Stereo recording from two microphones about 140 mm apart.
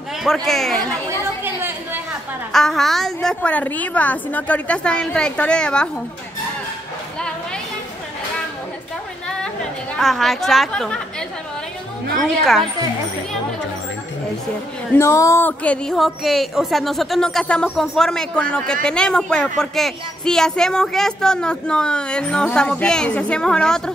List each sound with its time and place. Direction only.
0.5 s speech: centre (ahead or behind)
1.0 s chatter: 15° right (ahead or behind)
2.5 s a woman's voice: centre (ahead or behind)
9.4 s chatter: 5° left (ahead or behind)
12.2 s speech: centre (ahead or behind)
15.0 s speech: 20° left (ahead or behind)